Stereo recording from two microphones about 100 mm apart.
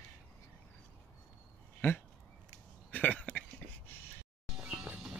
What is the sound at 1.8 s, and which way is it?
Speech, 25° left (ahead or behind).